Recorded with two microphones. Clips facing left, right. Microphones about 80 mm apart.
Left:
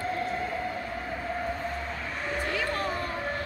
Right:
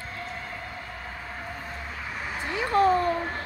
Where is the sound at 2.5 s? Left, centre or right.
Right.